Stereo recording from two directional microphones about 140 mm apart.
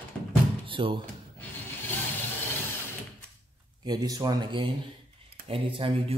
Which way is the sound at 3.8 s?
30° right (ahead or behind).